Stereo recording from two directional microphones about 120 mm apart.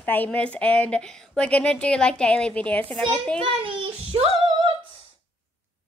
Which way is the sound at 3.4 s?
50° right (ahead or behind).